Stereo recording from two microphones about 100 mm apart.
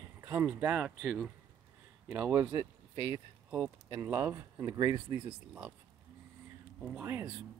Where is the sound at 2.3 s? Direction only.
40° right (ahead or behind).